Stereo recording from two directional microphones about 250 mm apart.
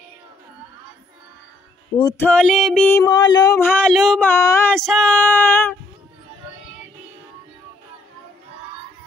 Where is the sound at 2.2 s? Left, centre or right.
Centre.